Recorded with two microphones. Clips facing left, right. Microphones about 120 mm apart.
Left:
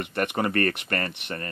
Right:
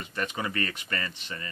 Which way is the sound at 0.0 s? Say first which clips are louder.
Left 6 dB; 65° left (ahead or behind).